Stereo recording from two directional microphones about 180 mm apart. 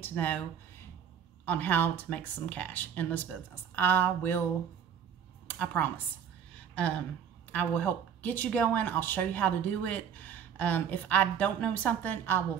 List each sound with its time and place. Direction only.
0.0 s speech: 10° left (ahead or behind)
1.4 s speech: 10° left (ahead or behind)
5.6 s speech: 10° left (ahead or behind)
7.5 s speech: 10° left (ahead or behind)